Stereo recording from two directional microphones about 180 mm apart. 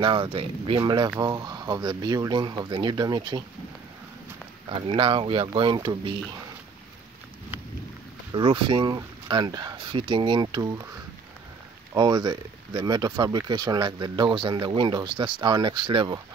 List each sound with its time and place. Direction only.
0.0 s speech: 30° right (ahead or behind)
4.6 s speech: 30° right (ahead or behind)
8.3 s speech: 25° right (ahead or behind)
11.9 s speech: 25° right (ahead or behind)